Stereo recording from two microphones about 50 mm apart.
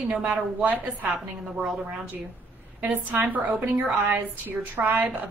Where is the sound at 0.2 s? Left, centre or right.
Right.